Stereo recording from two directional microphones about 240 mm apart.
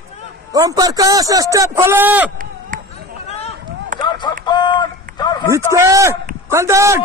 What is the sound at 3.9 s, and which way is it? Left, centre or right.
Run, right.